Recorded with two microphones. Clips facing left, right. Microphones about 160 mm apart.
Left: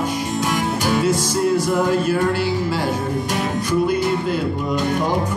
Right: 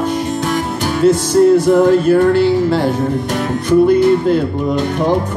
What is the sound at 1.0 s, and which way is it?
Music, 55° right (ahead or behind).